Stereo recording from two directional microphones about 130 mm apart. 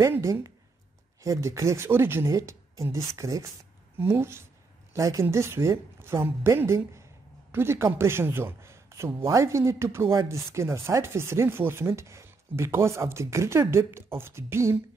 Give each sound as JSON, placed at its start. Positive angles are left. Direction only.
{"t": 0.0, "sound": "speech", "side_deg": -25}